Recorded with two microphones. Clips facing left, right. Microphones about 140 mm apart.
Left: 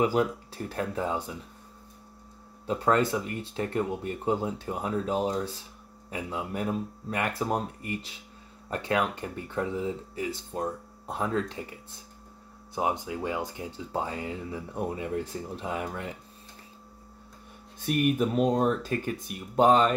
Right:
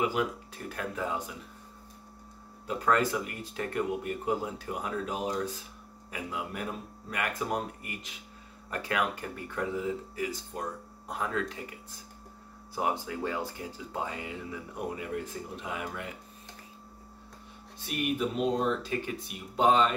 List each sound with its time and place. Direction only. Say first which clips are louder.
0.0 s speech: left 5 dB; 35° left (ahead or behind)
2.6 s speech: left 3 dB; 25° left (ahead or behind)
13.9 s speech: left 4 dB; 35° left (ahead or behind)
17.7 s speech: left 6 dB; 45° left (ahead or behind)